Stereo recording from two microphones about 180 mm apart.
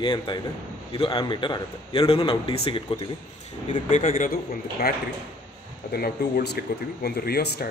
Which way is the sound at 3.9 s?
45° left (ahead or behind).